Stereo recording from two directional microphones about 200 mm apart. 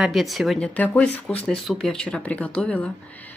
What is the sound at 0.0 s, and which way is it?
Speech, centre (ahead or behind).